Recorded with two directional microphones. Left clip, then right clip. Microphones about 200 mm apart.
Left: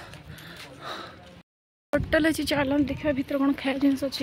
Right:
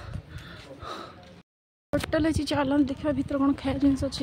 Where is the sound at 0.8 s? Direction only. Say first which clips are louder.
Left 1 dB; centre (ahead or behind).